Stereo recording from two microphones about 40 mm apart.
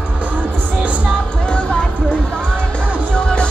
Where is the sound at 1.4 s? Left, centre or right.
Left.